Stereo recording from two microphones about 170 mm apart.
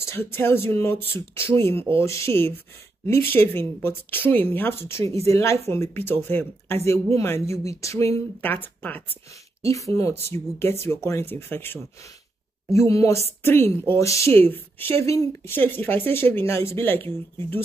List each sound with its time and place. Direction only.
0.0 s a woman's voice: 15° left (ahead or behind)
5.0 s speech: 35° right (ahead or behind)
5.3 s a woman's voice: 15° left (ahead or behind)